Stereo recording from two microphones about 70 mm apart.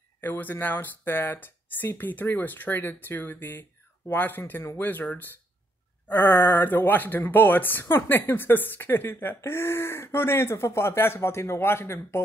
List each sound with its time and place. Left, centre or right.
0.2 s speech: left